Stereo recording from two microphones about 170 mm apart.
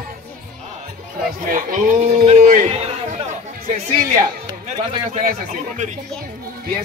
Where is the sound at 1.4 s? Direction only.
50° right (ahead or behind).